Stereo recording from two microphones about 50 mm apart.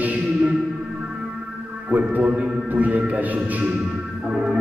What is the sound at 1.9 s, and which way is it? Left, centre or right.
A man's voice, right.